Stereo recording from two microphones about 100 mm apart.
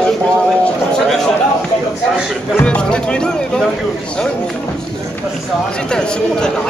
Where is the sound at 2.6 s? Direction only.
10° left (ahead or behind).